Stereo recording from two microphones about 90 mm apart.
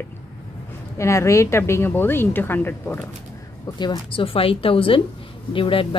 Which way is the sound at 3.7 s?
70° left (ahead or behind).